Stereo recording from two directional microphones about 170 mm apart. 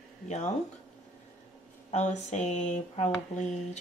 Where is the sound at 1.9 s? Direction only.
45° left (ahead or behind).